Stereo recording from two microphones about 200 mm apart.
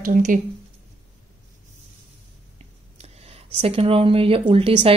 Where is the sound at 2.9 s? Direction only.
30° right (ahead or behind).